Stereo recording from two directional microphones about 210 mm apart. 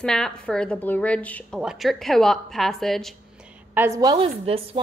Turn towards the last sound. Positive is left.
turn(degrees=-25)  # may be behind; listen again after turning